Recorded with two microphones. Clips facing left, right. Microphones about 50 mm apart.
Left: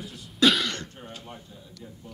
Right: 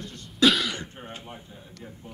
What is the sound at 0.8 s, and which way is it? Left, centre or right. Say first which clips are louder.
Throat clearing: right 1 dB; right.